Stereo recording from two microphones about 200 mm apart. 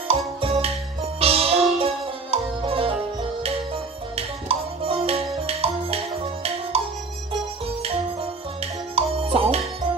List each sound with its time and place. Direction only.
0.4 s music: 30° right (ahead or behind)
4.1 s music: 30° right (ahead or behind)
8.9 s music: 30° right (ahead or behind)